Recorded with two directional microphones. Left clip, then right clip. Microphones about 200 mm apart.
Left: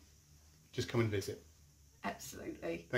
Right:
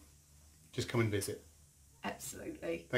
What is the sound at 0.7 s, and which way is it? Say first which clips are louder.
Speech: right 1 dB; 20° right (ahead or behind).